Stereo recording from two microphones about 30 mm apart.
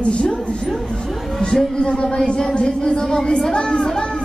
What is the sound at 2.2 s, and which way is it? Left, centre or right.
A child's voice, centre.